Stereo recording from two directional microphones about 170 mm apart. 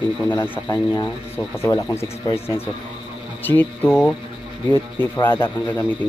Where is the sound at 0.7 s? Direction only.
25° left (ahead or behind).